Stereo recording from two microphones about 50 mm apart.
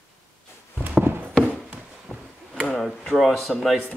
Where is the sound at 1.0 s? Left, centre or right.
Right.